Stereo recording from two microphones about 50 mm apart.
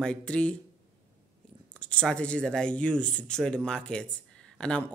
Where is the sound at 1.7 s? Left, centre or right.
Left.